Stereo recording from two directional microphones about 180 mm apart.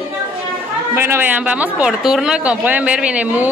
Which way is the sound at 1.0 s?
10° right (ahead or behind).